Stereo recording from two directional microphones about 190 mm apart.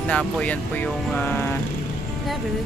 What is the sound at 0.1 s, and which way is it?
Speech, 5° left (ahead or behind).